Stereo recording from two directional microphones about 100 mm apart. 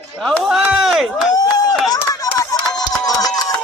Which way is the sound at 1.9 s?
35° left (ahead or behind).